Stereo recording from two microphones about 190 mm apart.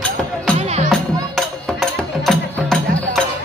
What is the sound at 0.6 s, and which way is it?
Music, 35° right (ahead or behind).